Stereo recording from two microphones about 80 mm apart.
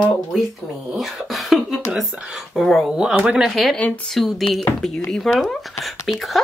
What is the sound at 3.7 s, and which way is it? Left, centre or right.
Speech, centre.